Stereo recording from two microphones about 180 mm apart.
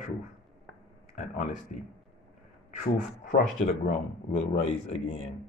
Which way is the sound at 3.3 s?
45° left (ahead or behind).